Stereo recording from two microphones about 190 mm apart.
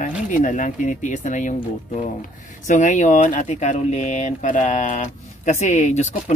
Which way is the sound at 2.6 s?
40° left (ahead or behind).